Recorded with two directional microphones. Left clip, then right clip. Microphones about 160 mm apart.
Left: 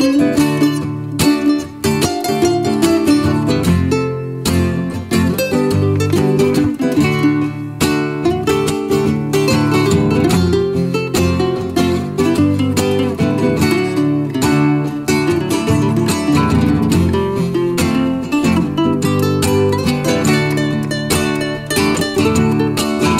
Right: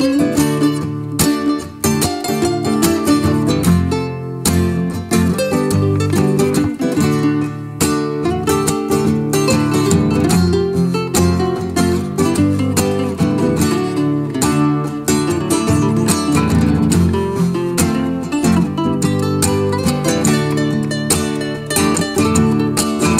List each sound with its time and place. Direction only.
2.4 s music: centre (ahead or behind)
5.1 s music: 20° right (ahead or behind)
8.5 s music: 20° right (ahead or behind)
14.4 s music: 20° right (ahead or behind)
18.5 s music: centre (ahead or behind)
19.4 s music: 20° right (ahead or behind)
21.8 s music: 20° right (ahead or behind)